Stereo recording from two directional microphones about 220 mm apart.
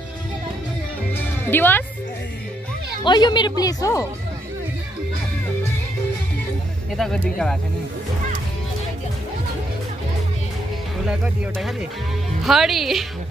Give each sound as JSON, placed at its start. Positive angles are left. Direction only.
{"t": 1.1, "sound": "music", "side_deg": 10}
{"t": 3.0, "sound": "speech", "side_deg": 20}
{"t": 7.0, "sound": "speech", "side_deg": 0}
{"t": 12.4, "sound": "speech", "side_deg": 0}